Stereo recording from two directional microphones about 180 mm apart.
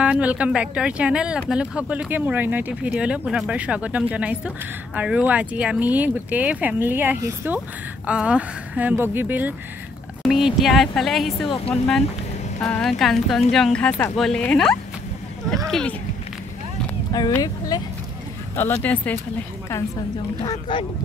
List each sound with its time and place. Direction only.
0.0 s speech: 5° right (ahead or behind)
11.4 s speech: 25° left (ahead or behind)
12.5 s speech: 5° left (ahead or behind)
17.4 s speech: 20° left (ahead or behind)
18.6 s speech: 10° left (ahead or behind)
20.4 s speech: 30° left (ahead or behind)